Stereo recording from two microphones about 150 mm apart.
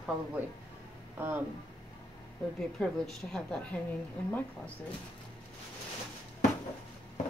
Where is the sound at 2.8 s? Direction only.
5° left (ahead or behind).